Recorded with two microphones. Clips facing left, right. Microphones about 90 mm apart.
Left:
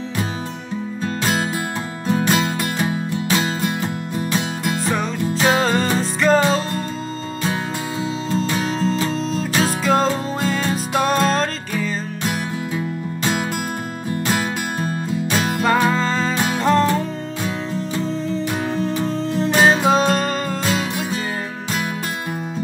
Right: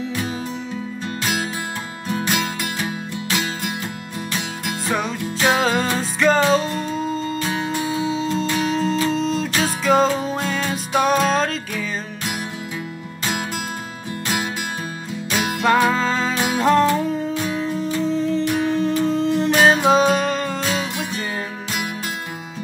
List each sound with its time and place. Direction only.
2.0 s music: 35° left (ahead or behind)
4.8 s music: centre (ahead or behind)
8.0 s music: centre (ahead or behind)
15.6 s music: centre (ahead or behind)